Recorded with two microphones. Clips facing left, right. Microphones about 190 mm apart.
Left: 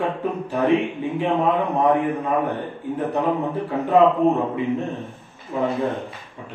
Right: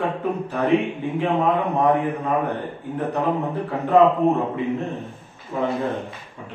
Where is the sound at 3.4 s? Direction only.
Centre (ahead or behind).